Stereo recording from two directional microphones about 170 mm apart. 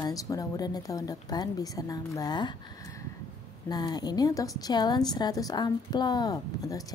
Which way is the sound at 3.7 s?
25° left (ahead or behind).